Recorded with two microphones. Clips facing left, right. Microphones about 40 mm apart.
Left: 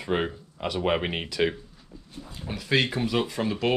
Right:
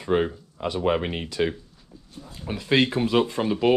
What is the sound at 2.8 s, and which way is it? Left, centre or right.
Speech, right.